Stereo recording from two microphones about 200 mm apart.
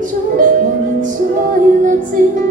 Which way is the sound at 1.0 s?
40° right (ahead or behind).